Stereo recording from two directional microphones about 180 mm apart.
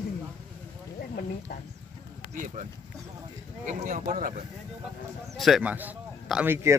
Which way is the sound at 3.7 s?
45° right (ahead or behind).